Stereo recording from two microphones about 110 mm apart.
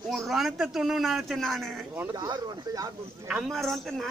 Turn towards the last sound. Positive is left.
turn(degrees=0)  # may be behind; listen again after turning